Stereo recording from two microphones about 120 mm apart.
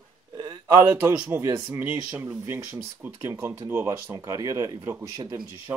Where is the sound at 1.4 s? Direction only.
25° right (ahead or behind).